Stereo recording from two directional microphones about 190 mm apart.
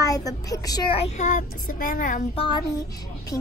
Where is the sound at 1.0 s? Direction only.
40° left (ahead or behind).